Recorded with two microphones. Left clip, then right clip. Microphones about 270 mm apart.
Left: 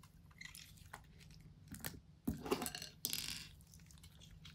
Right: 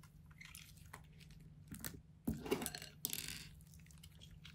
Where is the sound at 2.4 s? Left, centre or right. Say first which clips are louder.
Left 1 dB; centre.